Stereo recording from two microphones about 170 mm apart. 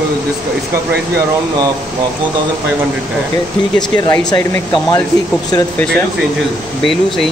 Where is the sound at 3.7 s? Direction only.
25° left (ahead or behind).